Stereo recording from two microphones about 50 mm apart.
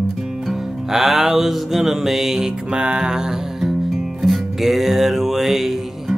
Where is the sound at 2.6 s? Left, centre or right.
Centre.